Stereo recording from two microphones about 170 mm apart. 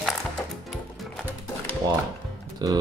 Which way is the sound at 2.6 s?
25° right (ahead or behind).